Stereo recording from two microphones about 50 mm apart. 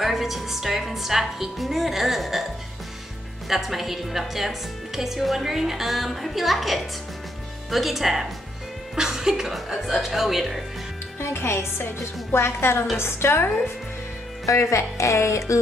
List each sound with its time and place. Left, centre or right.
0.0 s a woman's voice: centre
3.4 s a woman's voice: centre
11.1 s speech: left
14.5 s speech: left